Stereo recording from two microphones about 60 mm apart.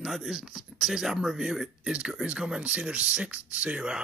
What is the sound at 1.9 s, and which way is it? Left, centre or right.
Speech, centre.